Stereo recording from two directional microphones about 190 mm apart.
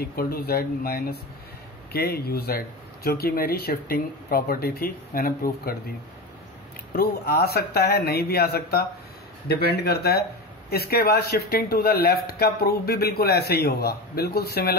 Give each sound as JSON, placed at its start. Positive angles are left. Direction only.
{"t": 0.0, "sound": "speech", "side_deg": 50}
{"t": 7.0, "sound": "a man's voice", "side_deg": 55}